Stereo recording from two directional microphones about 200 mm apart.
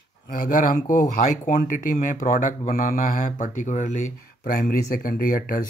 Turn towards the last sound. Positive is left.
turn(degrees=45)  # may be behind; listen again after turning